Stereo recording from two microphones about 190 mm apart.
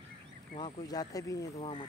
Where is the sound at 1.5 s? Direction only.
30° left (ahead or behind).